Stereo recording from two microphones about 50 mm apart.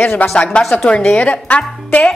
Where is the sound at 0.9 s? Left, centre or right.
Left.